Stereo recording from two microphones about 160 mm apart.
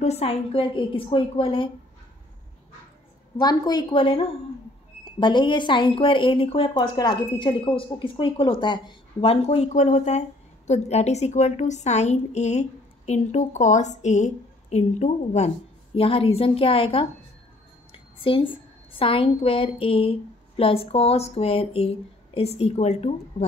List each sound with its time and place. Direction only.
0.0 s speech: 40° left (ahead or behind)
3.3 s a woman's voice: 25° left (ahead or behind); by 23.5 s 50° left (ahead or behind)